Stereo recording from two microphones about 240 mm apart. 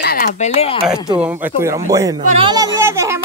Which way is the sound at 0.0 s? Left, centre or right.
Left.